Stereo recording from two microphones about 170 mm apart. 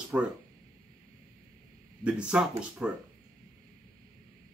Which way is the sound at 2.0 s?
5° right (ahead or behind).